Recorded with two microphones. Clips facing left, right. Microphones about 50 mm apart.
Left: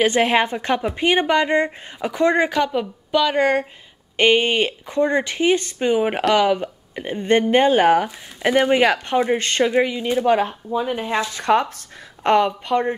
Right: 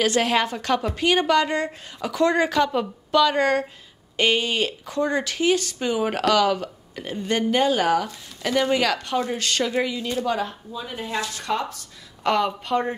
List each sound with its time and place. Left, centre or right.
0.0 s a woman's voice: left
4.2 s speech: left
10.7 s speech: left
11.4 s a woman's voice: left
12.7 s a woman's voice: centre